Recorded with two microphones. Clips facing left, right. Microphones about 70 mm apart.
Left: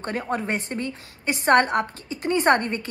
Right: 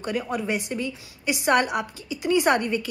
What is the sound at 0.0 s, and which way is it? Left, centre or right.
A woman's voice, left.